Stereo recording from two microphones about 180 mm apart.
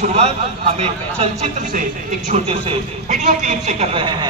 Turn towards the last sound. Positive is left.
turn(degrees=-30)  # may be behind; listen again after turning